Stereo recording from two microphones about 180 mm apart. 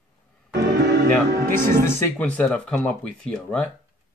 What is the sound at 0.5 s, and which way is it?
Music, 65° right (ahead or behind).